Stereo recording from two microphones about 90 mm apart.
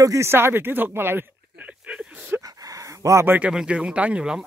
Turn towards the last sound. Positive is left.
turn(degrees=-10)  # may be behind; listen again after turning